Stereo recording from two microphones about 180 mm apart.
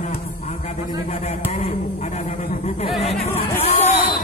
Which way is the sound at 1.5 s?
35° left (ahead or behind).